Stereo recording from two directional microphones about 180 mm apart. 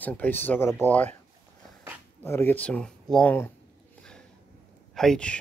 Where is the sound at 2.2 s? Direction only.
10° left (ahead or behind).